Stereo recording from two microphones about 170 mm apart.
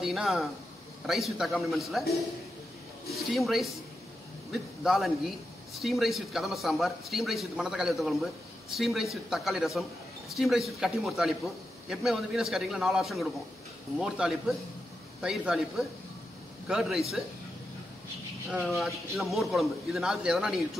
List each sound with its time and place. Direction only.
0.0 s a man's voice: centre (ahead or behind)
3.1 s a man's voice: centre (ahead or behind)
18.8 s a man's voice: centre (ahead or behind)